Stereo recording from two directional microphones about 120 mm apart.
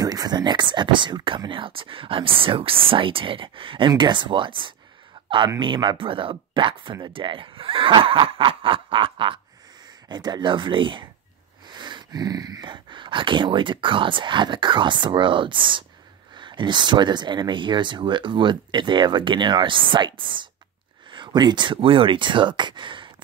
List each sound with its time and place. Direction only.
0.0 s speech: 30° right (ahead or behind)